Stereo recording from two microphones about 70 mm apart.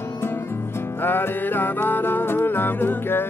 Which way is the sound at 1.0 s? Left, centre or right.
Left.